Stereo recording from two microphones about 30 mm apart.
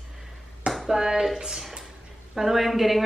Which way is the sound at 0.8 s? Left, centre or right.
Centre.